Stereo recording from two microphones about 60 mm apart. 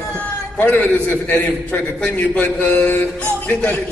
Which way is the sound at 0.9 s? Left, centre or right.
Left.